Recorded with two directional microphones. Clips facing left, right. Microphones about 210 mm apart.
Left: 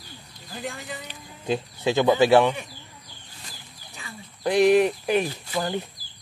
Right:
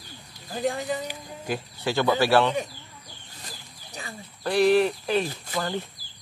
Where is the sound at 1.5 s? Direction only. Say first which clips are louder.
Left 4 dB; 20° left (ahead or behind).